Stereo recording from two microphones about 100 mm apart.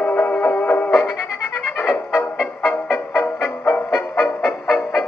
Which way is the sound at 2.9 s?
25° left (ahead or behind).